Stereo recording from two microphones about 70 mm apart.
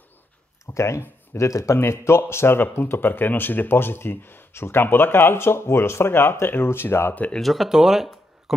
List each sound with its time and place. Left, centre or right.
0.7 s speech: left
7.3 s speech: centre